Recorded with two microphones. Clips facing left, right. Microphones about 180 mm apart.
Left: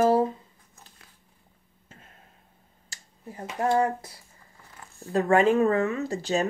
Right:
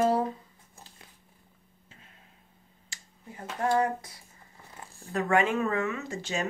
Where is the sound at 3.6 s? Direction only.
25° left (ahead or behind).